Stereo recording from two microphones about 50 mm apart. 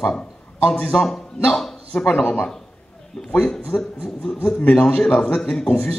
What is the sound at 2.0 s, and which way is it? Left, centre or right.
Speech, left.